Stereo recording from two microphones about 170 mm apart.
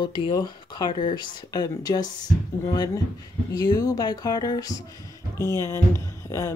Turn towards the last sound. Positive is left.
turn(degrees=15)  # may be behind; listen again after turning